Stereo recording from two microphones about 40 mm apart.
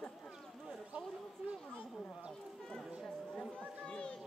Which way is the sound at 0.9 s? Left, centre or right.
Right.